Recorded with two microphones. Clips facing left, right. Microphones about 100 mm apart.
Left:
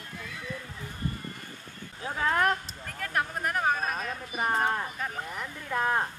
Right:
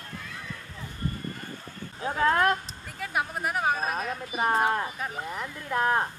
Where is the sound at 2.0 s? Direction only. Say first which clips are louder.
Right 3 dB; 25° right (ahead or behind).